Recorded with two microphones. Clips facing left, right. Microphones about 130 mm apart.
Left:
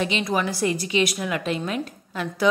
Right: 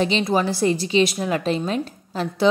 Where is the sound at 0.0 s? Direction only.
30° right (ahead or behind).